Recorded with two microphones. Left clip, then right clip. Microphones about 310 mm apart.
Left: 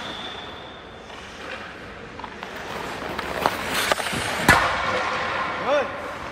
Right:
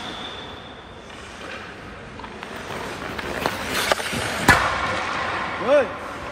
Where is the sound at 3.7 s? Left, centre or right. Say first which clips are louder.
Right 4 dB; centre.